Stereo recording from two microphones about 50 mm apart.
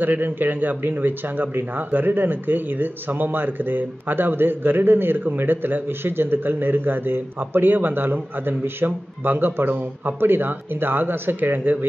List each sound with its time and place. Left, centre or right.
0.0 s a man's voice: right